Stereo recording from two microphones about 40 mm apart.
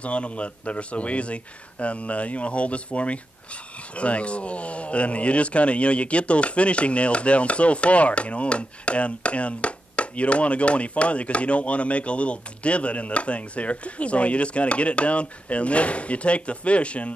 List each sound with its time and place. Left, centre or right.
0.0 s speech: left